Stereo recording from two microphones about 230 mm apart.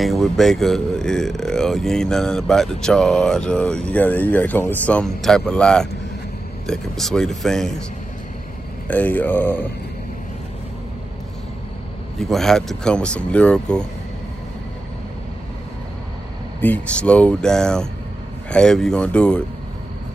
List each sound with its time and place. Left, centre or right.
0.0 s speech: centre
8.8 s speech: centre
12.2 s speech: centre
16.6 s speech: centre